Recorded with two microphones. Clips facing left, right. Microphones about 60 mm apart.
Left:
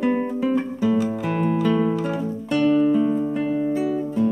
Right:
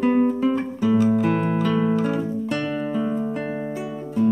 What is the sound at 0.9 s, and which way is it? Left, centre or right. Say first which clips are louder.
Music: right 5 dB; centre.